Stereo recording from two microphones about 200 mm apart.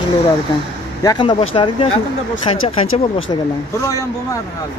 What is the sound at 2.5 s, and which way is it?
Speech, 90° left.